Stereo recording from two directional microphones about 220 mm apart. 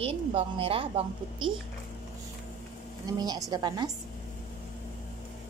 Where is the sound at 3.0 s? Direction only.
15° right (ahead or behind).